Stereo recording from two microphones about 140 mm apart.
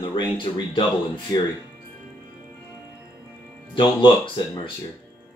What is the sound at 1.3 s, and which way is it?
Speech, 25° left (ahead or behind).